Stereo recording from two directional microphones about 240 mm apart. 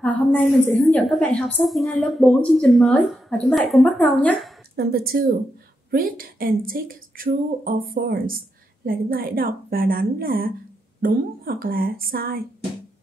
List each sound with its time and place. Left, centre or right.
0.0 s a woman's voice: centre
4.7 s speech: right